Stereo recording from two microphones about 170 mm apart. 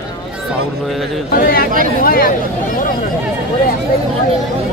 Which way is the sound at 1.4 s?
60° left (ahead or behind).